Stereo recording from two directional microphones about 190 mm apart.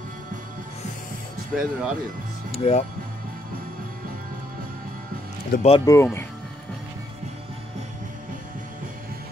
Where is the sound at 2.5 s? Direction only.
35° left (ahead or behind).